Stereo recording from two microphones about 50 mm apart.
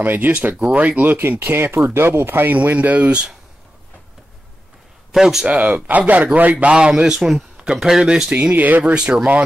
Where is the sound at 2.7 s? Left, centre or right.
Right.